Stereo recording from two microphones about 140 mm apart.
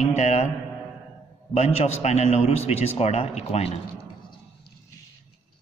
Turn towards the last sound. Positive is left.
turn(degrees=50)  # may be behind; listen again after turning